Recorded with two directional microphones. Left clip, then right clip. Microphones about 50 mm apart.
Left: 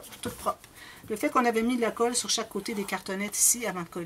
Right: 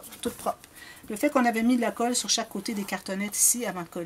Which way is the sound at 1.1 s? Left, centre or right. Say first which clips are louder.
Right 1 dB; right.